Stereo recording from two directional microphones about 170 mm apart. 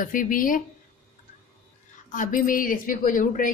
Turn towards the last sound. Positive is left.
turn(degrees=50)  # may be behind; listen again after turning